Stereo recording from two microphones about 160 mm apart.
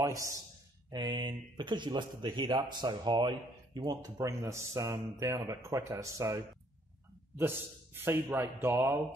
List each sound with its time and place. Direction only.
0.0 s a man's voice: 20° right (ahead or behind)